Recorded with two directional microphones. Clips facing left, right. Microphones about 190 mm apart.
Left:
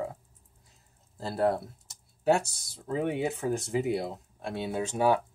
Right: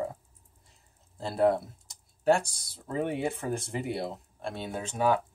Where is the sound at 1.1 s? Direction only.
Centre (ahead or behind).